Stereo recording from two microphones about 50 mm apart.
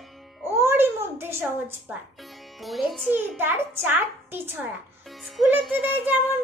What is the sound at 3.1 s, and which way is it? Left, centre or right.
Child singing, right.